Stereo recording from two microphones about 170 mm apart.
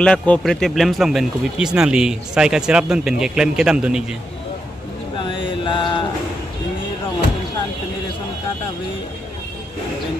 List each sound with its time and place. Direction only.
0.0 s speech: 5° left (ahead or behind)
5.2 s mantra: 30° left (ahead or behind)